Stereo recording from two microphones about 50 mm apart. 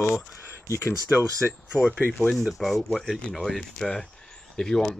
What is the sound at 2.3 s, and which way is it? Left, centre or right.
Speech, centre.